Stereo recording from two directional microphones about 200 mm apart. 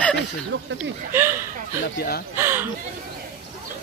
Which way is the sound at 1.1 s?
10° right (ahead or behind).